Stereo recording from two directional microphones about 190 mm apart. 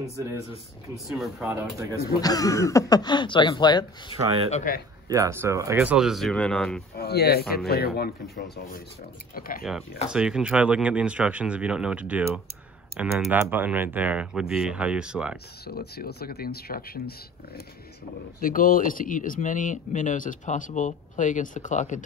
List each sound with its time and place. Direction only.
0.0 s speech: 15° right (ahead or behind)
0.9 s speech: centre (ahead or behind)
1.5 s speech: 15° right (ahead or behind)
2.2 s speech: 20° left (ahead or behind)
4.5 s speech: 35° left (ahead or behind)
5.0 s speech: 20° right (ahead or behind); by 6.8 s 5° left (ahead or behind)
7.0 s speech: 55° left (ahead or behind)
9.6 s speech: centre (ahead or behind)
15.6 s speech: 55° left (ahead or behind)
18.4 s speech: 50° left (ahead or behind)